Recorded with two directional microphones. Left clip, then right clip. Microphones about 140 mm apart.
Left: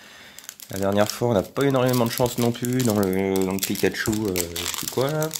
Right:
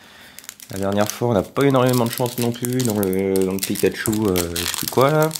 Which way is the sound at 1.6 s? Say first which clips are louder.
Right 6 dB; 15° right (ahead or behind).